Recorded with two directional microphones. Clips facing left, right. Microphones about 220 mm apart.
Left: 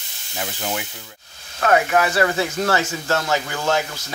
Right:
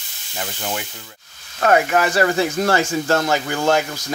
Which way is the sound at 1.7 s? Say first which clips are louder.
Right 1 dB; 35° right (ahead or behind).